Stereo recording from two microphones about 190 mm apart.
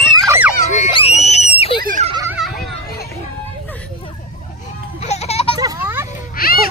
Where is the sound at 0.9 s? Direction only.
30° left (ahead or behind).